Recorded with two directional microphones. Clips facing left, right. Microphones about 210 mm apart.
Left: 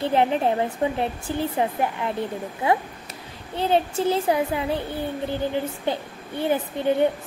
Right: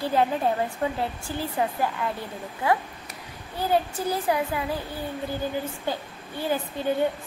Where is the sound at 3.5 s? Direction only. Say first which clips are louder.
Left 3 dB; 25° left (ahead or behind).